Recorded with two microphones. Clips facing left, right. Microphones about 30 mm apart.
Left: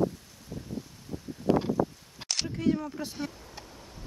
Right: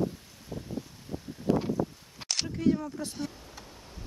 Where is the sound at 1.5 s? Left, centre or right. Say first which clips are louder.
Left 2 dB; left.